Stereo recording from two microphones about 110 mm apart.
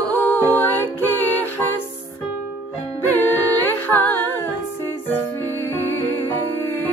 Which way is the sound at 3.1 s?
20° left (ahead or behind).